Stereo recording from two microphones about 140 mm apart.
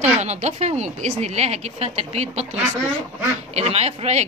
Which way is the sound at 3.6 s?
50° right (ahead or behind).